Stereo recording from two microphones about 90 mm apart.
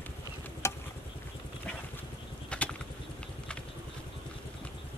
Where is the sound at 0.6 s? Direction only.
30° left (ahead or behind).